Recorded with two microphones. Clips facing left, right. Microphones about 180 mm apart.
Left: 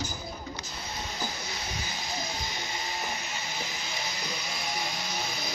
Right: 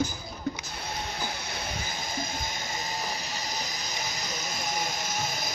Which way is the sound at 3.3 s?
40° right (ahead or behind).